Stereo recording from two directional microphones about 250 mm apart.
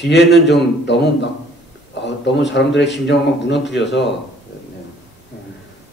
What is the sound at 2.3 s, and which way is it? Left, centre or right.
Speech, left.